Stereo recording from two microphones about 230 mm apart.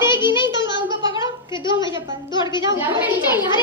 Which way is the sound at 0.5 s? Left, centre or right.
Left.